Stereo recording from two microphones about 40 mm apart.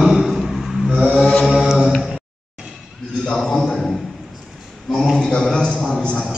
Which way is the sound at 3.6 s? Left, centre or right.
Centre.